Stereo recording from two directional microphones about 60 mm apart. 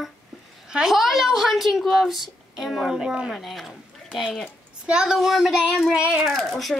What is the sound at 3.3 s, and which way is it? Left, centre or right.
A woman's voice, centre.